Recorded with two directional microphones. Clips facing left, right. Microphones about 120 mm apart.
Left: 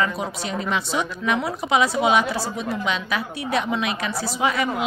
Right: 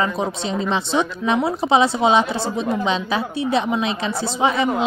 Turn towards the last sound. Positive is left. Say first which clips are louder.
# right 4 dB
turn(degrees=-25)  # may be behind; listen again after turning